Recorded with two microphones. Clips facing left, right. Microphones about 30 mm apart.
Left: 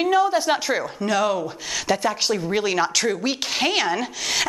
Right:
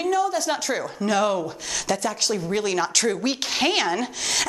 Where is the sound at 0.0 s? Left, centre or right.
Left.